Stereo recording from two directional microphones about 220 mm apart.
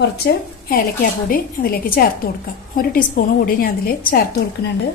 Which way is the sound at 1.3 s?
40° left (ahead or behind).